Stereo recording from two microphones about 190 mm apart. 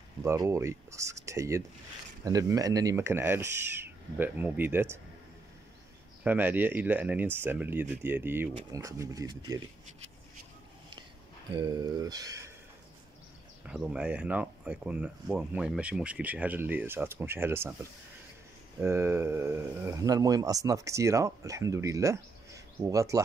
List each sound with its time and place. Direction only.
0.2 s speech: 15° right (ahead or behind)
6.2 s speech: 10° right (ahead or behind)
11.5 s speech: 20° right (ahead or behind)
13.7 s speech: 5° right (ahead or behind)